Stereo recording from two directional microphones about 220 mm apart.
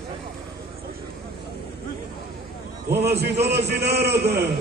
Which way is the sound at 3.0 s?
50° right (ahead or behind).